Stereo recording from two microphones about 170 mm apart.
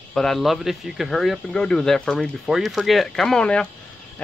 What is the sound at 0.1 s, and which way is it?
Speech, centre (ahead or behind).